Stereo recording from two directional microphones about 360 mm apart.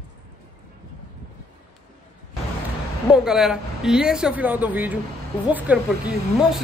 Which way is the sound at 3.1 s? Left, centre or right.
Centre.